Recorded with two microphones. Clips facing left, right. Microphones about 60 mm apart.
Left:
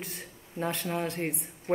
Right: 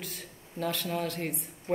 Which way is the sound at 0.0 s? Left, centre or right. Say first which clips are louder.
Left 1 dB; left.